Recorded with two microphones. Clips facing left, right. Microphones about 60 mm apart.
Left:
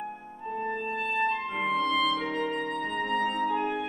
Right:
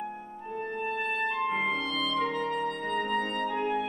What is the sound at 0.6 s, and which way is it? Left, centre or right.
Music, centre.